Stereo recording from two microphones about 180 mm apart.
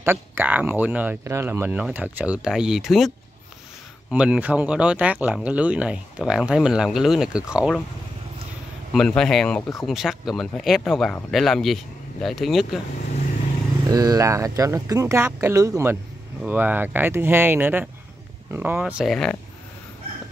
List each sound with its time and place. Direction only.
0.0 s speech: 15° right (ahead or behind)
4.1 s speech: 10° right (ahead or behind)
8.9 s speech: 5° left (ahead or behind)
13.8 s speech: 20° right (ahead or behind); by 19.3 s centre (ahead or behind)